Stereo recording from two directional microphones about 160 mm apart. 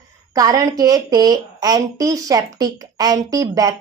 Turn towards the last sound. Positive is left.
turn(degrees=-20)  # may be behind; listen again after turning